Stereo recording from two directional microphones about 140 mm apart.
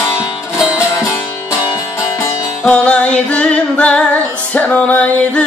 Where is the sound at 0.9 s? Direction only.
20° left (ahead or behind).